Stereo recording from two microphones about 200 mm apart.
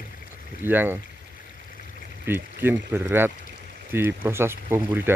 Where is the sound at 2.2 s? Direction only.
10° right (ahead or behind).